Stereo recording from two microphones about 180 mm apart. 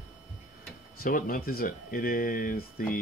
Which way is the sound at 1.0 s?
55° left (ahead or behind).